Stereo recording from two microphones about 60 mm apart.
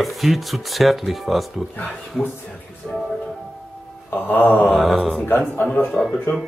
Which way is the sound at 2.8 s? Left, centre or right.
Centre.